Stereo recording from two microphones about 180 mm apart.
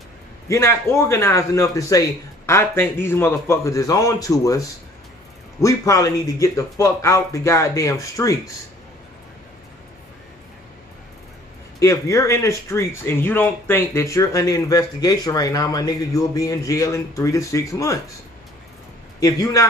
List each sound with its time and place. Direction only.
0.5 s speech: 15° left (ahead or behind)
11.8 s speech: 15° left (ahead or behind)
19.1 s a man's voice: 20° left (ahead or behind)